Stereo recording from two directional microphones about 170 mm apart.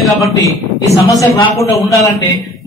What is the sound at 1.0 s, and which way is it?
Speech, 20° left (ahead or behind).